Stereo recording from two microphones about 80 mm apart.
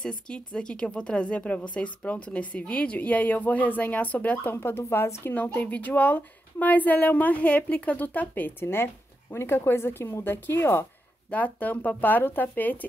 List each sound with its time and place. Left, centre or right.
0.3 s a woman's voice: centre; by 5.3 s left
5.3 s a woman's voice: centre
11.2 s a woman's voice: centre